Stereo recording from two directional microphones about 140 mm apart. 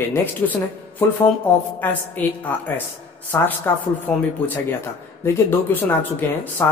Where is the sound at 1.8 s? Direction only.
10° left (ahead or behind).